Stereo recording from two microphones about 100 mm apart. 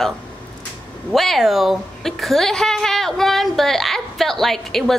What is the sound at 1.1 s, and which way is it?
A woman's voice, centre (ahead or behind).